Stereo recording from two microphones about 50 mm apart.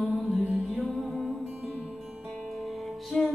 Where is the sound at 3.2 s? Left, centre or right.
Centre.